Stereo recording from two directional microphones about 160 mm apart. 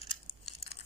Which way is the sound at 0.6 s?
80° left.